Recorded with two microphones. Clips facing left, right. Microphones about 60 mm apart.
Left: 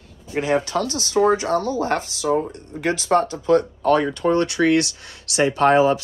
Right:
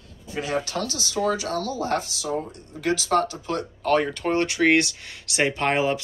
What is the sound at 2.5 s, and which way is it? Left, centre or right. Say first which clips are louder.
Speech: left 2 dB; left.